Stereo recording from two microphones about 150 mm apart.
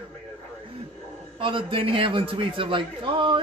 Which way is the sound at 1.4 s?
35° right (ahead or behind).